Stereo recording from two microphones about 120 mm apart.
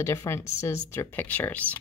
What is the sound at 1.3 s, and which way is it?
Speech, 15° left (ahead or behind).